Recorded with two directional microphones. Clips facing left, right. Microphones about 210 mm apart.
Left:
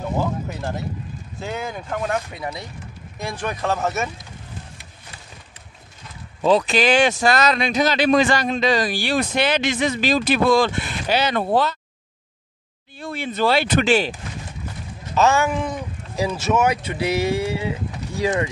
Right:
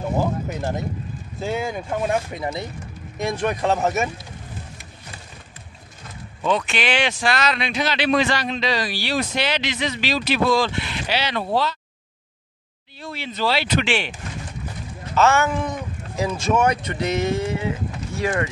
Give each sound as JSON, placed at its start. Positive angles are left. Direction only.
{"t": 0.6, "sound": "speech", "side_deg": -20}
{"t": 6.4, "sound": "speech", "side_deg": 35}
{"t": 13.0, "sound": "speech", "side_deg": 50}
{"t": 15.1, "sound": "speech", "side_deg": 15}